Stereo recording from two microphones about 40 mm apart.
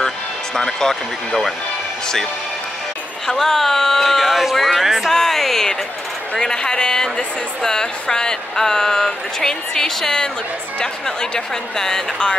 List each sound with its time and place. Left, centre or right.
0.6 s a woman's voice: centre
3.3 s speech: centre
5.1 s a sound: centre
6.3 s a woman's voice: centre